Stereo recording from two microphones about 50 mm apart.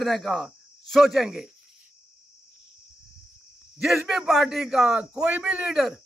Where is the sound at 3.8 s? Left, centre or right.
Centre.